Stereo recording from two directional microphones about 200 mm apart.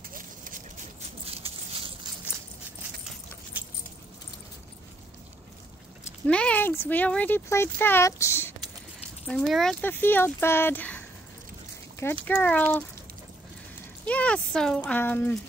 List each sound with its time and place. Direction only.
0.4 s a sound: 40° right (ahead or behind)
6.2 s speech: 5° left (ahead or behind)
9.3 s speech: centre (ahead or behind)
12.3 s speech: 5° left (ahead or behind)
14.0 s speech: 5° left (ahead or behind)